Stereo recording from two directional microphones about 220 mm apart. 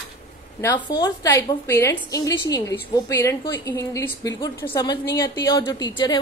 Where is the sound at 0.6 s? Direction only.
20° left (ahead or behind).